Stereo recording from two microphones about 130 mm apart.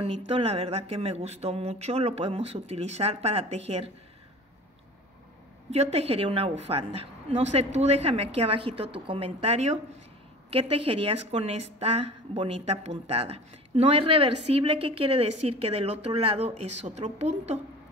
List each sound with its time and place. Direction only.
0.0 s a woman's voice: 45° right (ahead or behind)
5.7 s a woman's voice: 55° right (ahead or behind)